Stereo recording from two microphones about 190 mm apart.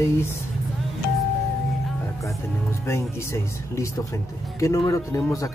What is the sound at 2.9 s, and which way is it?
Speech, 15° left (ahead or behind).